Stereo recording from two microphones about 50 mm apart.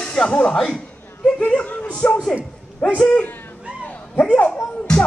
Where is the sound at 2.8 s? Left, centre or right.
Centre.